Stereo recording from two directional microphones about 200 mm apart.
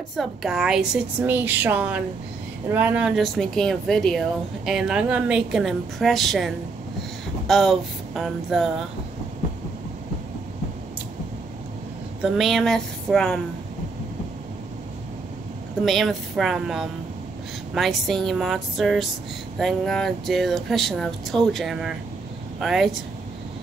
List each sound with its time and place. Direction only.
0.1 s a woman's voice: centre (ahead or behind)
7.0 s a sound: centre (ahead or behind)
12.2 s speech: centre (ahead or behind)
15.8 s speech: centre (ahead or behind)